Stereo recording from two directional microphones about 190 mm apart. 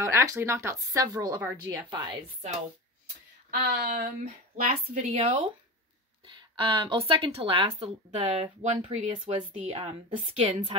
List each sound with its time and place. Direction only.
0.0 s speech: 15° right (ahead or behind)
3.4 s a woman's voice: 50° right (ahead or behind); by 10.7 s 35° right (ahead or behind)